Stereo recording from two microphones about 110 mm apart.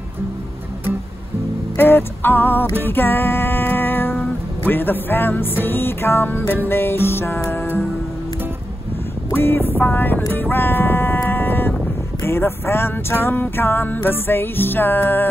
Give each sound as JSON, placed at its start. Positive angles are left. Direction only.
{"t": 1.8, "sound": "music", "side_deg": 20}
{"t": 9.3, "sound": "music", "side_deg": 20}